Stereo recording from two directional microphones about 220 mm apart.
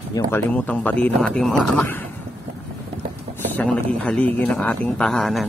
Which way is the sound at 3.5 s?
10° left (ahead or behind).